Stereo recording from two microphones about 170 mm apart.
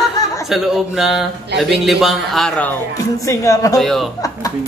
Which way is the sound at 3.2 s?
20° left (ahead or behind).